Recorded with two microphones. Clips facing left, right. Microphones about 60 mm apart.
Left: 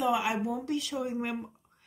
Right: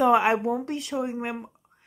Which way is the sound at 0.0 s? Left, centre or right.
Right.